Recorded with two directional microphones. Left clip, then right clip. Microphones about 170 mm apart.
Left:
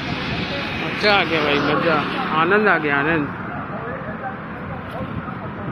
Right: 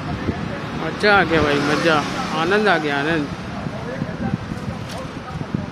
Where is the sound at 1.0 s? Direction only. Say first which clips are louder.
Right 2 dB; 50° right (ahead or behind).